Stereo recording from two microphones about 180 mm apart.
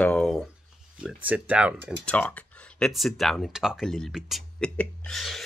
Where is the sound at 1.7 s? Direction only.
75° right (ahead or behind).